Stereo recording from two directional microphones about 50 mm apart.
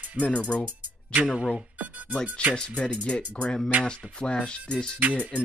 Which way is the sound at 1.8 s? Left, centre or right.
Right.